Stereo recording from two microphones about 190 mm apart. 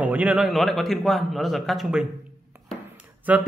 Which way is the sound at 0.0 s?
10° right (ahead or behind).